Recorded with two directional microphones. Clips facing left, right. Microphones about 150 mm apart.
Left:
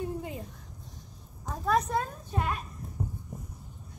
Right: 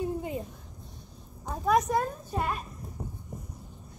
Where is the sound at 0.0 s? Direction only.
30° right (ahead or behind).